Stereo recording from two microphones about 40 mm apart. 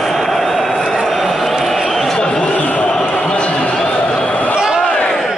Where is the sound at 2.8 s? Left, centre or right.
Left.